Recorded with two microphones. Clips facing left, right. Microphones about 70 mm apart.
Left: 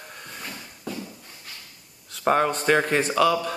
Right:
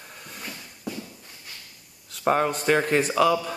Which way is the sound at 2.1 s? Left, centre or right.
Centre.